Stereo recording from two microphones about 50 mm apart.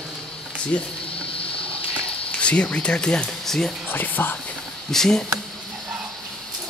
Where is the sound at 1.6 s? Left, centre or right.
Left; by 3.7 s centre.